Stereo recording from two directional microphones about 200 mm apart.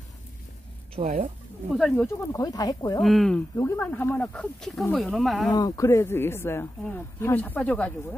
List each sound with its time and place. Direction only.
0.9 s speech: 40° right (ahead or behind)
1.7 s speech: centre (ahead or behind)
2.0 s speech: 15° left (ahead or behind)
3.0 s speech: centre (ahead or behind)
3.5 s speech: 15° left (ahead or behind)
5.5 s speech: 20° left (ahead or behind)